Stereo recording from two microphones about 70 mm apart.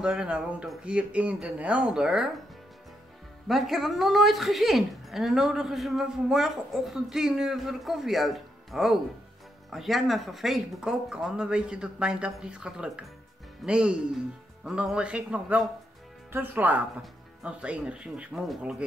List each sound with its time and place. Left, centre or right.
0.0 s speech: centre
3.4 s speech: centre
16.3 s speech: right